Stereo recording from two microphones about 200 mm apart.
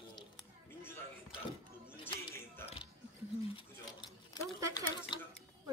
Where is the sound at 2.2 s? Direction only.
15° left (ahead or behind).